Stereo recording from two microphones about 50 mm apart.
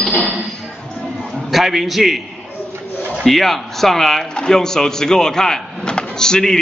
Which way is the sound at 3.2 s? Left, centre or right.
Centre.